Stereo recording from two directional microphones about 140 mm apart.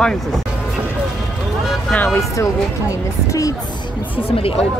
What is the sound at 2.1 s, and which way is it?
Speech, 20° left (ahead or behind).